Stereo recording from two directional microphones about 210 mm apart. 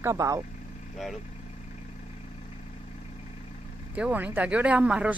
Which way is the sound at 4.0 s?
5° right (ahead or behind).